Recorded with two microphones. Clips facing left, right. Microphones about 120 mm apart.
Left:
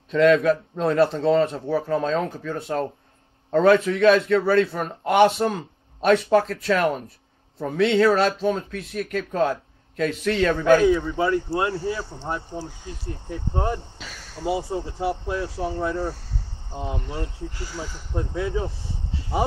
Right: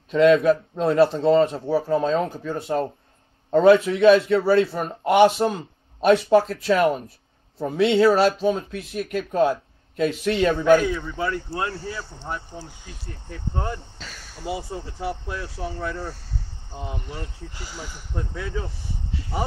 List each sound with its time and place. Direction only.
0.1 s a man's voice: 5° right (ahead or behind)
10.9 s speech: 15° left (ahead or behind)
13.3 s speech: 20° left (ahead or behind)
13.9 s a sound: 5° left (ahead or behind)
14.4 s speech: 25° left (ahead or behind)